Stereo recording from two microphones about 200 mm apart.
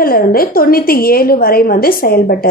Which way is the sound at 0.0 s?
45° left (ahead or behind).